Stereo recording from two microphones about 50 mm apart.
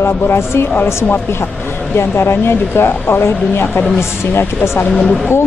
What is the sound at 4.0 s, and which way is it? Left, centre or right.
Speech, left.